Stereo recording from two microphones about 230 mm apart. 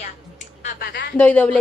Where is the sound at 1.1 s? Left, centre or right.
Centre.